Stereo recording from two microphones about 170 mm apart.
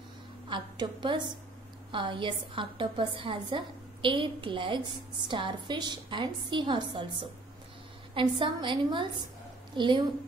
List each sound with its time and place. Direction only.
0.5 s a woman's voice: 25° right (ahead or behind)